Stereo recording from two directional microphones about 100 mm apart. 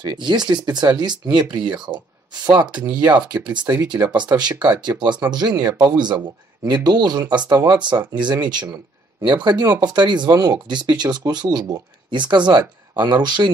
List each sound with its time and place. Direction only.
0.0 s speech: 50° right (ahead or behind)